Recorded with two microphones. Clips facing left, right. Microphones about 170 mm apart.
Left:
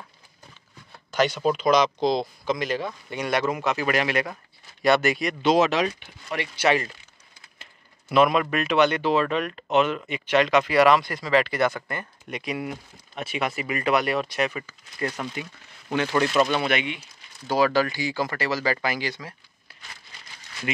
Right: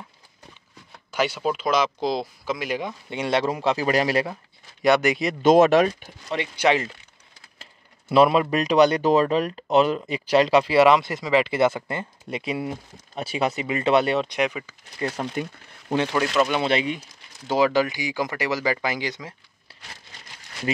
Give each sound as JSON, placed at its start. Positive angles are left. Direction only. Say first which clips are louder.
{"t": 1.1, "sound": "speech", "louder": "left 2 dB", "side_deg": -10}
{"t": 3.1, "sound": "speech", "louder": "right 2 dB", "side_deg": -25}
{"t": 4.8, "sound": "speech", "louder": "right 1 dB", "side_deg": -20}
{"t": 5.4, "sound": "speech", "louder": "right 6 dB", "side_deg": -50}
{"t": 5.9, "sound": "speech", "louder": "right 3 dB", "side_deg": -40}
{"t": 6.2, "sound": "speech", "louder": "right 2 dB", "side_deg": -15}
{"t": 8.1, "sound": "speech", "louder": "right 3 dB", "side_deg": -30}
{"t": 15.4, "sound": "speech", "louder": "right 6 dB", "side_deg": -45}
{"t": 16.2, "sound": "speech", "louder": "left 2 dB", "side_deg": -5}
{"t": 16.6, "sound": "speech", "louder": "right 3 dB", "side_deg": -35}
{"t": 17.5, "sound": "speech", "louder": "right 1 dB", "side_deg": -20}